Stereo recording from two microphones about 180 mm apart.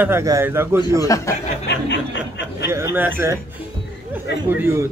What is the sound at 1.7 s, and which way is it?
Speech, 75° left (ahead or behind).